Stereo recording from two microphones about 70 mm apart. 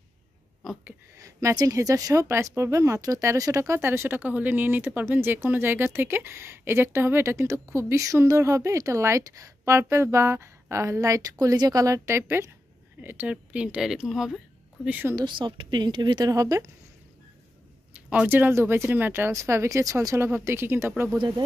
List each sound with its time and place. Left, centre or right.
0.6 s a sound: centre
1.1 s speech: right
4.2 s speech: right
13.3 s speech: centre
15.1 s speech: right
16.3 s speech: right
17.9 s speech: right
19.3 s speech: right
20.3 s speech: right